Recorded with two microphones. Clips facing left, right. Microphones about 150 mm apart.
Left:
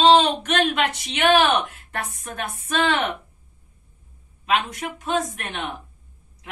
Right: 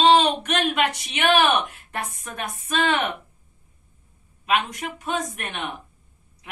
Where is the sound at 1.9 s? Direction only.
15° right (ahead or behind).